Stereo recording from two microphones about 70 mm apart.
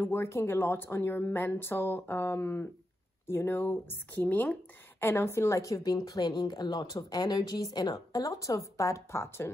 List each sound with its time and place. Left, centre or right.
0.0 s speech: left
5.0 s speech: left
7.0 s speech: left
7.9 s speech: left